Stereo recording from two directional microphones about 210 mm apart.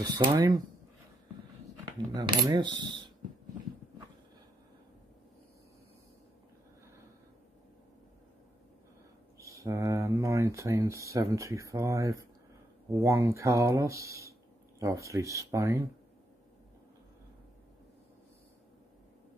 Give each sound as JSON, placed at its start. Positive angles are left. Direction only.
{"t": 0.0, "sound": "speech", "side_deg": -20}
{"t": 2.1, "sound": "speech", "side_deg": -20}
{"t": 9.4, "sound": "speech", "side_deg": -15}